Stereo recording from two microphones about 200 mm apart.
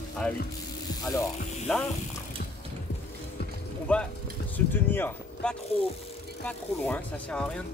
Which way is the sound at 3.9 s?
5° left (ahead or behind).